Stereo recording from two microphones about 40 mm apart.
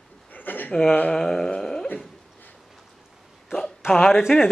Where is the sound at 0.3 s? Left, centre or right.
Left.